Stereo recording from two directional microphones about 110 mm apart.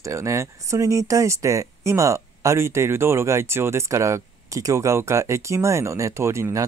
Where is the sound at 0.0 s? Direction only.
25° right (ahead or behind).